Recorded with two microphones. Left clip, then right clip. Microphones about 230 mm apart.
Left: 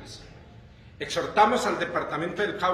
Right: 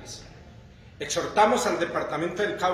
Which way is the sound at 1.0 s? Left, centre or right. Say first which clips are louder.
Even; centre.